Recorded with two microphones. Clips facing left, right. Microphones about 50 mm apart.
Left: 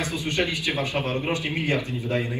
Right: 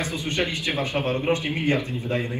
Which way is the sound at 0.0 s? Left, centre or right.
Right.